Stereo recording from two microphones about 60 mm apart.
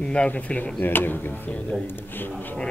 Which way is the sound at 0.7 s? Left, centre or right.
Left.